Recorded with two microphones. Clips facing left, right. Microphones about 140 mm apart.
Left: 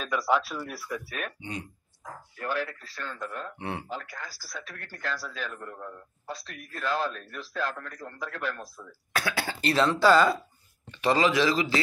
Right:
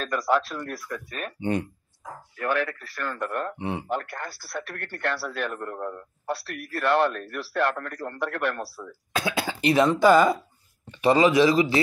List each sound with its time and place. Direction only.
0.0 s speech: centre (ahead or behind)
1.4 s speech: 60° right (ahead or behind)
3.5 s speech: 20° right (ahead or behind)
3.9 s speech: 60° right (ahead or behind)
9.1 s speech: 20° right (ahead or behind)